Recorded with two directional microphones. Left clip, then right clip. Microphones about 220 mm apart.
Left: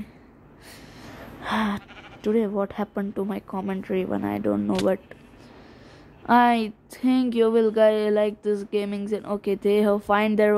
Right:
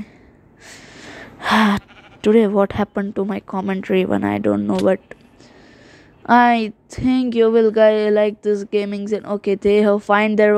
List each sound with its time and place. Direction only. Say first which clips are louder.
1.4 s speech: right 10 dB; 25° right (ahead or behind)
6.2 s a woman's voice: right 5 dB; 15° right (ahead or behind)